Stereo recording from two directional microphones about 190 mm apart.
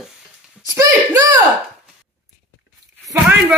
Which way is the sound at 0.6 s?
20° right (ahead or behind).